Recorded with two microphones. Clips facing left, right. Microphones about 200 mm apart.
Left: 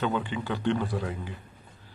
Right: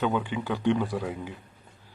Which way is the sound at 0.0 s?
10° right (ahead or behind).